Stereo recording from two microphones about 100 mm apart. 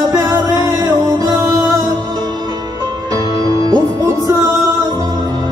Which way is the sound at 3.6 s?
35° right (ahead or behind).